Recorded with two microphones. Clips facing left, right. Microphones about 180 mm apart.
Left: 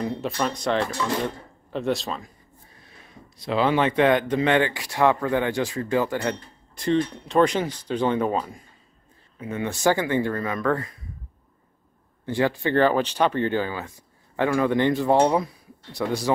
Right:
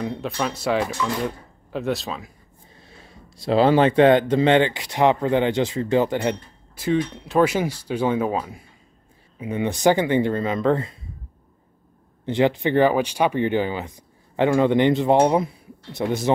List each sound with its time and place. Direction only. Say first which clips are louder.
0.0 s speech: even; centre (ahead or behind)
2.7 s speech: right 3 dB; 30° right (ahead or behind)
6.7 s speech: even; 5° right (ahead or behind); by 11.0 s 25° right (ahead or behind)
12.3 s speech: right 3 dB; 20° right (ahead or behind)